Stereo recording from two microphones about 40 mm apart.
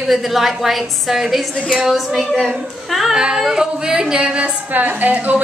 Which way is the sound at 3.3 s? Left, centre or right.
Centre.